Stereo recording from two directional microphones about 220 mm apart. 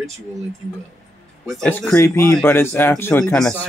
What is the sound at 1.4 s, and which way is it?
Speech, centre (ahead or behind).